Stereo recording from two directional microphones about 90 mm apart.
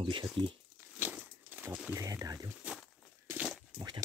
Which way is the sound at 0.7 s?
25° right (ahead or behind).